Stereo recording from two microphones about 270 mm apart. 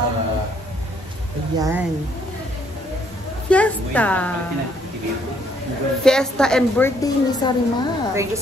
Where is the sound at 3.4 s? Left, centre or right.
Centre.